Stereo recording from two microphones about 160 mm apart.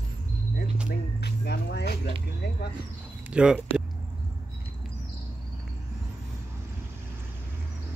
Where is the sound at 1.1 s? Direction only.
90° left.